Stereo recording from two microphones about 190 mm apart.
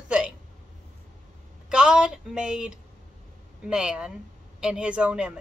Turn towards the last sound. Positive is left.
turn(degrees=-5)  # may be behind; listen again after turning